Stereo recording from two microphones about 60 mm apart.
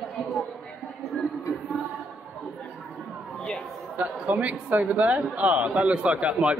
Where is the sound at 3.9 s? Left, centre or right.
Right.